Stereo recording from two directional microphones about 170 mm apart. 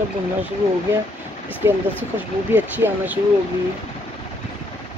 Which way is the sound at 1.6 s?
15° right (ahead or behind).